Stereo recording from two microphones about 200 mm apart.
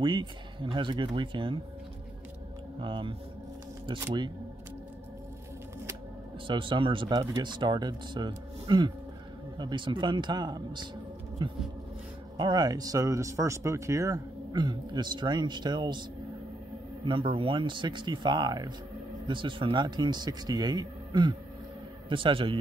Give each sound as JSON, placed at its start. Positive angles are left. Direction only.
{"t": 0.0, "sound": "speech", "side_deg": -25}
{"t": 2.8, "sound": "speech", "side_deg": -25}
{"t": 6.4, "sound": "speech", "side_deg": -25}
{"t": 17.0, "sound": "speech", "side_deg": -25}